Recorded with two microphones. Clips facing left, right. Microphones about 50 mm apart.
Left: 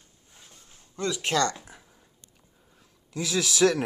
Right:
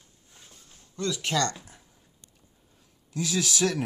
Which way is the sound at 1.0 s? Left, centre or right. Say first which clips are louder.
Left 2 dB; left.